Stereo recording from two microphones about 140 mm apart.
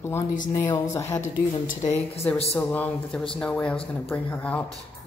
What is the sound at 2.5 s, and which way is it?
Speech, 10° left (ahead or behind).